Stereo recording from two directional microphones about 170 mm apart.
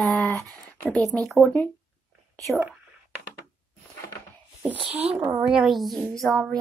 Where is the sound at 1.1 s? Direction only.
Centre (ahead or behind).